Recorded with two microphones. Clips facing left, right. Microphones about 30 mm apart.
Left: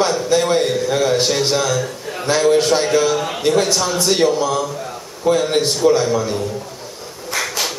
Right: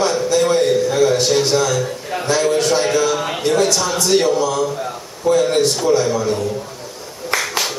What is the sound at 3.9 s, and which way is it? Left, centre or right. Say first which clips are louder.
Speech: right 3 dB; centre.